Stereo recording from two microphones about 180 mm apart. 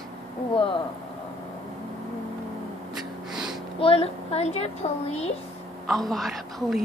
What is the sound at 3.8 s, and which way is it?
Speech, 30° left (ahead or behind).